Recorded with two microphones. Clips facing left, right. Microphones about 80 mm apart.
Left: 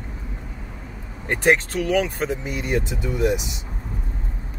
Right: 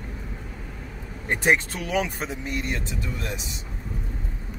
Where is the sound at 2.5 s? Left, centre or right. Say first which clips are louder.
Left 5 dB; centre.